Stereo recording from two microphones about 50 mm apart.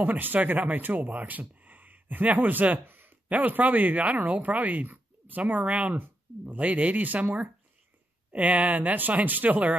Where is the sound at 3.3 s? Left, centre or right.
Right.